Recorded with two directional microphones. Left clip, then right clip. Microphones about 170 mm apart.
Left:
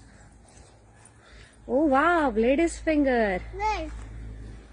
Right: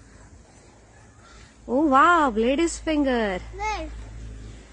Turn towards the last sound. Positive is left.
turn(degrees=40)  # may be behind; listen again after turning